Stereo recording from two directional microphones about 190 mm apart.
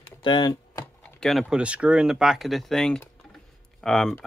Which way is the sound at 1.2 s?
Centre (ahead or behind).